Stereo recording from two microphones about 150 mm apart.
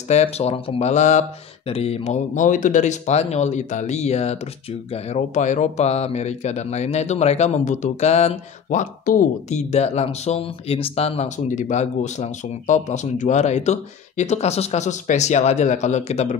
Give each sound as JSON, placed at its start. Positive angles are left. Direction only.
{"t": 0.1, "sound": "speech", "side_deg": 45}